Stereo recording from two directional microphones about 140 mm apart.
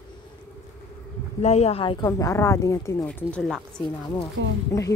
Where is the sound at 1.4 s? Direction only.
50° left (ahead or behind).